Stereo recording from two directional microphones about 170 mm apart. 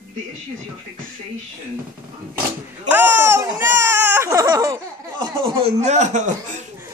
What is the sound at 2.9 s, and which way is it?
Speech, 10° right (ahead or behind).